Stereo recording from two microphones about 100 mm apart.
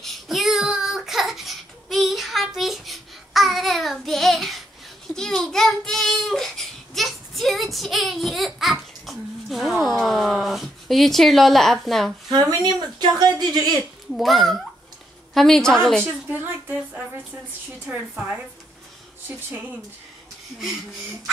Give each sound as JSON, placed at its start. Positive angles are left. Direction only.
{"t": 0.0, "sound": "child singing", "side_deg": 0}
{"t": 12.3, "sound": "speech", "side_deg": -45}
{"t": 14.1, "sound": "a woman's voice", "side_deg": 0}
{"t": 16.0, "sound": "a woman's voice", "side_deg": -20}